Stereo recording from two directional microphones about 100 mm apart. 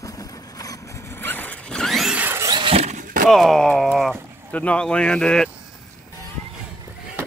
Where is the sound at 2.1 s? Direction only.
15° right (ahead or behind).